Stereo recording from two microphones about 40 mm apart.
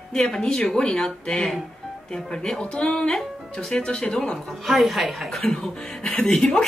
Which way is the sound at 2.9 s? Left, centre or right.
Centre.